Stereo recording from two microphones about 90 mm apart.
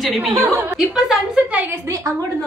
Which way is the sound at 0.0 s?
Centre (ahead or behind).